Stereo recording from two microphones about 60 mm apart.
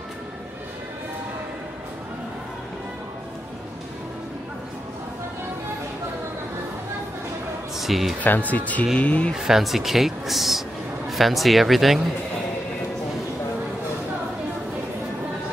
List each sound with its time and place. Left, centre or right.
7.7 s a man's voice: centre
8.2 s speech: left
9.3 s speech: centre